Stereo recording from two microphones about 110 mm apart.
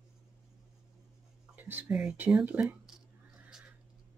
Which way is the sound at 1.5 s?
15° right (ahead or behind).